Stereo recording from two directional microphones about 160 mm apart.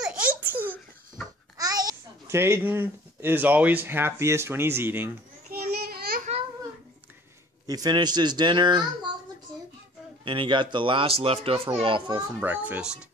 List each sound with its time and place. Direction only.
0.0 s a sound: 10° right (ahead or behind)
1.6 s a child's voice: 25° right (ahead or behind)
5.5 s a sound: 65° right (ahead or behind)
7.6 s speech: 25° right (ahead or behind)
10.2 s a child's voice: 30° right (ahead or behind)
12.4 s a child's voice: 10° right (ahead or behind)